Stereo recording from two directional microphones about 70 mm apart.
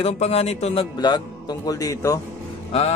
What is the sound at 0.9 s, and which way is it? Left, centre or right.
Speech, left.